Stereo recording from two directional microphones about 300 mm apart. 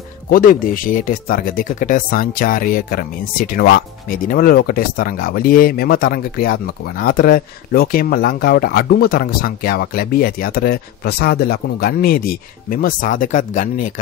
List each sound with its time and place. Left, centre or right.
0.3 s speech: left